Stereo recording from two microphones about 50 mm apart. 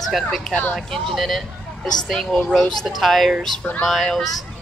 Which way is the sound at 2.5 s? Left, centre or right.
Centre.